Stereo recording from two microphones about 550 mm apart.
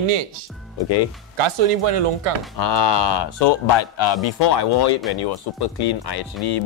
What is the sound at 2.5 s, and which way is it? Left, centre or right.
Speech, left.